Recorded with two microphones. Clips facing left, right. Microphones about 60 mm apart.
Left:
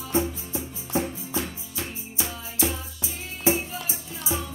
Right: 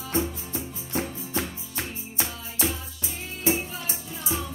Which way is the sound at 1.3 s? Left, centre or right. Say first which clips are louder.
Even; right.